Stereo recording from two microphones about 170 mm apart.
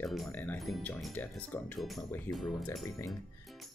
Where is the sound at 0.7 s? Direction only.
Centre (ahead or behind).